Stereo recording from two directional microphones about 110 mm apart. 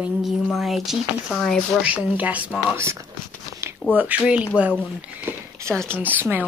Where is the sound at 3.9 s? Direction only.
15° right (ahead or behind).